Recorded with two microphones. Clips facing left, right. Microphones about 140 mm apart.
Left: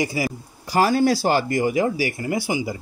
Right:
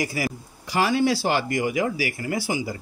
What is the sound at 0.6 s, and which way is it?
Speech, 40° left (ahead or behind).